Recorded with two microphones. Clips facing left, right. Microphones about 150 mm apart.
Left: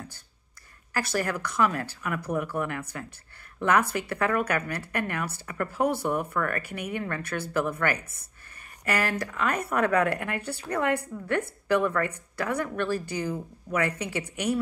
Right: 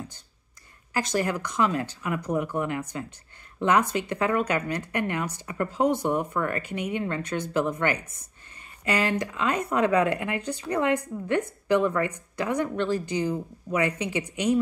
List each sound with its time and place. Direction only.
0.9 s speech: 15° right (ahead or behind)